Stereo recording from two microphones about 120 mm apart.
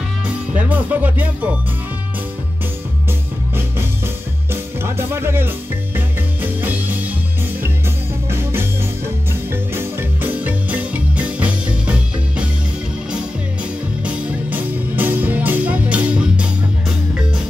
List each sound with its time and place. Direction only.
0.6 s speech: 15° right (ahead or behind)
3.5 s music: 20° right (ahead or behind)
8.3 s music: 20° right (ahead or behind)
14.0 s music: 10° right (ahead or behind)